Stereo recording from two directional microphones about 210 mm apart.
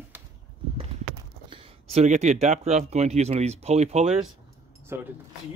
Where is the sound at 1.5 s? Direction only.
25° right (ahead or behind).